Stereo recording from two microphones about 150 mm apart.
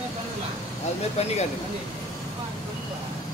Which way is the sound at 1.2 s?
45° left (ahead or behind).